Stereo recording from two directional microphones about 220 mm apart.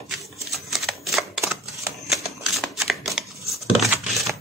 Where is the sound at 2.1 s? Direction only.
Centre (ahead or behind).